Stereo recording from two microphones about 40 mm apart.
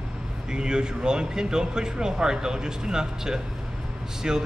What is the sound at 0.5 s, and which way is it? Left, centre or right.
Speech, centre.